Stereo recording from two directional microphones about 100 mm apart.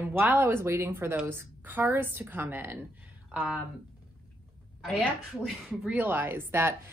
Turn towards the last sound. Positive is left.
turn(degrees=-25)  # may be behind; listen again after turning